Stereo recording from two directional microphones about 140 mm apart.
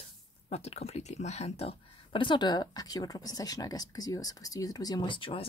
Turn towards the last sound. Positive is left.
turn(degrees=35)  # may be behind; listen again after turning